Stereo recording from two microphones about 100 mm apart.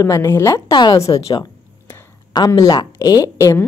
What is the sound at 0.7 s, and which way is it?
Speech, 50° left (ahead or behind).